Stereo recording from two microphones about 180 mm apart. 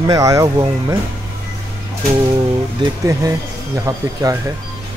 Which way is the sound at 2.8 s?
20° right (ahead or behind).